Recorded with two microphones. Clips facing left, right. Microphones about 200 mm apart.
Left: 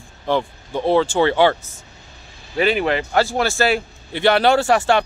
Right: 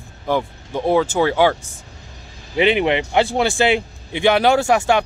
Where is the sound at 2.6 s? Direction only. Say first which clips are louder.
Right 2 dB; 20° right (ahead or behind).